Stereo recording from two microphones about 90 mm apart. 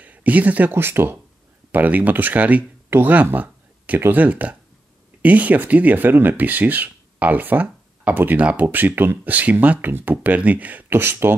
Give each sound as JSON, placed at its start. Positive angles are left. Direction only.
{"t": 0.0, "sound": "speech", "side_deg": -15}